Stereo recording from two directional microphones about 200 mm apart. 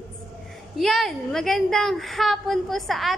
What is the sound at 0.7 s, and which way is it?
A woman's voice, centre (ahead or behind).